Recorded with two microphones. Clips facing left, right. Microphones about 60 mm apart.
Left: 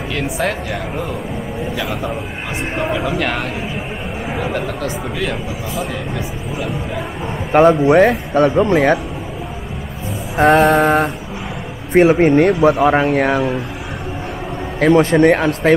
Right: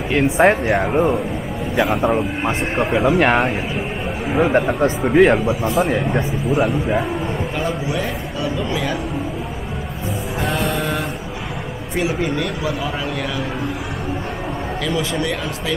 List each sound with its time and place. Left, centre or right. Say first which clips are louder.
0.1 s a man's voice: right 7 dB; right
4.4 s speech: right 8 dB; right
7.5 s a man's voice: left 18 dB; left
10.3 s music: left 12 dB; left
11.9 s a man's voice: left 11 dB; left
14.8 s a man's voice: left 12 dB; left